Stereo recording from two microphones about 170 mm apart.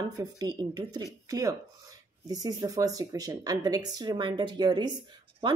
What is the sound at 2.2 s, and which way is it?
Speech, 20° right (ahead or behind).